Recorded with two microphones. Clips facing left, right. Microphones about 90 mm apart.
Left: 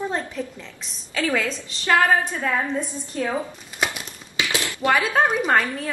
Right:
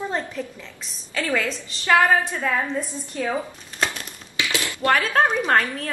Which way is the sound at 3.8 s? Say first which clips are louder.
Even; 15° left (ahead or behind).